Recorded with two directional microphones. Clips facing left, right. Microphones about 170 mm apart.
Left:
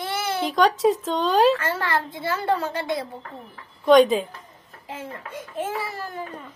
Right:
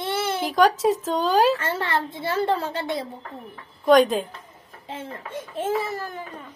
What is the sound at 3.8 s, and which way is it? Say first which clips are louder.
Speech: left 1 dB; centre (ahead or behind).